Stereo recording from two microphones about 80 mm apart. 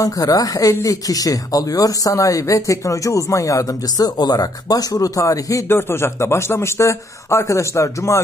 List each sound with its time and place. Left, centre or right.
0.0 s speech: left
5.7 s speech: left